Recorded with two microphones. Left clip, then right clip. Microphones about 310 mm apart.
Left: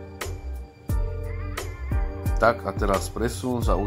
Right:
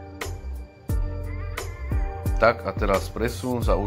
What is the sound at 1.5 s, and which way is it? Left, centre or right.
Music, centre.